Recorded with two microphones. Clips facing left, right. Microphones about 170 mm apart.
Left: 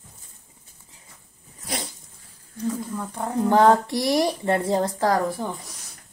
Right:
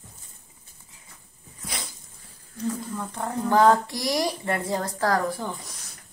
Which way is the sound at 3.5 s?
25° left (ahead or behind).